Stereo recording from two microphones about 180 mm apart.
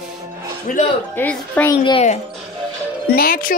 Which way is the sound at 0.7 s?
45° left (ahead or behind).